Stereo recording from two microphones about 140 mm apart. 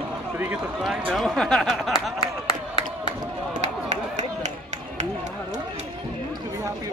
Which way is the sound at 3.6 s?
55° right (ahead or behind).